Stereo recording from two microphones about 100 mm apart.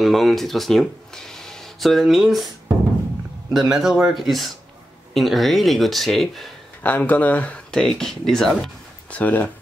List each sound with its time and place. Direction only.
0.0 s speech: centre (ahead or behind)
3.5 s speech: 5° right (ahead or behind)
6.8 s speech: 15° left (ahead or behind)
9.1 s speech: 15° left (ahead or behind)